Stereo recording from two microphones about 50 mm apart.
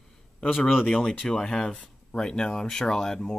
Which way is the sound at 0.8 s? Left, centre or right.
Left.